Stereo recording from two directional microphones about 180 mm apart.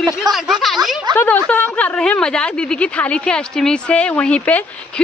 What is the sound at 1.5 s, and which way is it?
A woman's voice, 10° left (ahead or behind).